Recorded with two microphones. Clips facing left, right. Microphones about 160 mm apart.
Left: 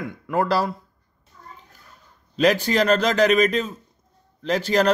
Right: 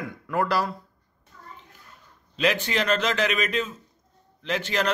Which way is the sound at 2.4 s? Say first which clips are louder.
Left 6 dB; 40° left (ahead or behind).